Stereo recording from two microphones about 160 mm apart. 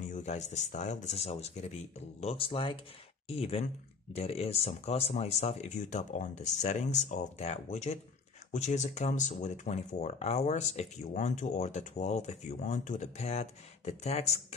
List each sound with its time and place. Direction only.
0.0 s speech: 50° left (ahead or behind)